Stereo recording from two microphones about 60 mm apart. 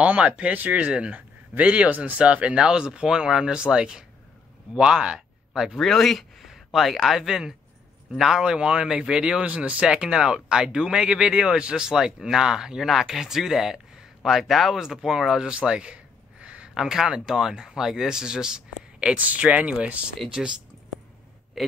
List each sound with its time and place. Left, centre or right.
0.0 s a man's voice: right
5.8 s a man's voice: centre
15.5 s a sound: centre
16.8 s a man's voice: centre
19.1 s speech: right
21.6 s a man's voice: centre